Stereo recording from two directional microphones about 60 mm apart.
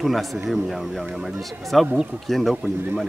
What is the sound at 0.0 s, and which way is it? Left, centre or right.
A man's voice, centre.